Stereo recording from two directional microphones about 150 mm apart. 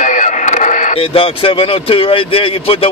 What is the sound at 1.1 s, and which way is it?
Speech, 35° left (ahead or behind).